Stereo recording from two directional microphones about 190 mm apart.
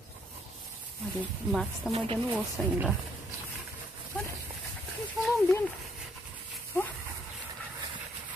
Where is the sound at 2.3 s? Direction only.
5° right (ahead or behind).